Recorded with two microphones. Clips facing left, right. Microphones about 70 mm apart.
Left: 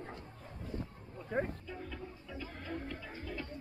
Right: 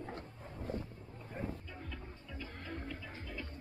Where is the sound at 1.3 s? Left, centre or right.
Left.